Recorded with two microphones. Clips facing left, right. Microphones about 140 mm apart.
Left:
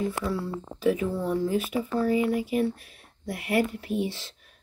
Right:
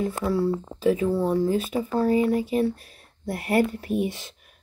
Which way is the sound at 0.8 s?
30° right (ahead or behind).